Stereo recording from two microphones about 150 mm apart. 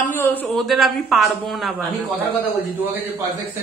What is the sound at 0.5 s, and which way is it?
Speech, centre (ahead or behind).